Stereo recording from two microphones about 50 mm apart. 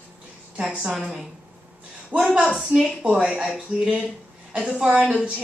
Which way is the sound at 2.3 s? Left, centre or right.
Centre.